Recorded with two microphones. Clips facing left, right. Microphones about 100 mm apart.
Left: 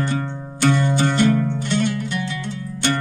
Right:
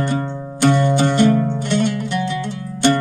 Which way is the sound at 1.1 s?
45° right (ahead or behind).